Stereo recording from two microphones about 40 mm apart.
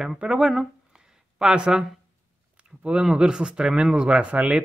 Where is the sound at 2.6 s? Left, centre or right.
Right.